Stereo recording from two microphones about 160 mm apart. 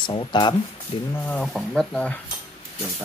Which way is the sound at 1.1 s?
10° left (ahead or behind).